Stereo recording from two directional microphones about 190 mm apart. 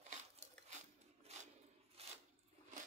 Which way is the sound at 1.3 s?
35° right (ahead or behind).